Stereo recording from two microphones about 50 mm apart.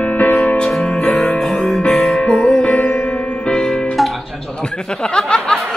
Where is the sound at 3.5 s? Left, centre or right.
Centre.